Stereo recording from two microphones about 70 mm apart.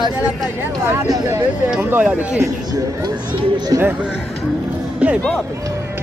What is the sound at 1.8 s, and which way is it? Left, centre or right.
Speech, right.